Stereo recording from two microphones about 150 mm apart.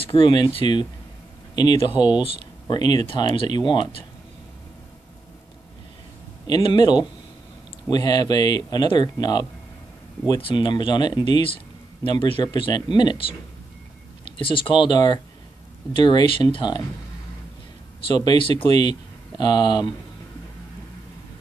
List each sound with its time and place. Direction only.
0.0 s speech: 35° left (ahead or behind)
6.4 s speech: 30° left (ahead or behind)
14.4 s speech: 35° left (ahead or behind)
18.0 s speech: 30° left (ahead or behind)